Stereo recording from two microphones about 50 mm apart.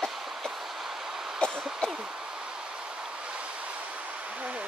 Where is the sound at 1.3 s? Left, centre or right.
Centre.